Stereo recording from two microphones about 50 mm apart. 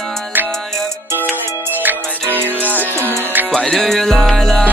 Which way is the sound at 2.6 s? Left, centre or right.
Right.